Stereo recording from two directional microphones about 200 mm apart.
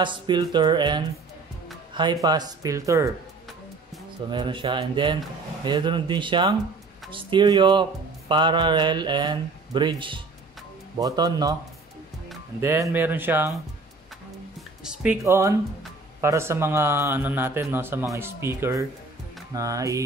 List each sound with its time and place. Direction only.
0.0 s speech: 25° right (ahead or behind)
2.2 s speech: 20° right (ahead or behind)
4.3 s speech: 25° right (ahead or behind)
12.5 s speech: 10° right (ahead or behind)
14.8 s speech: 5° right (ahead or behind)
15.2 s speech: 15° right (ahead or behind)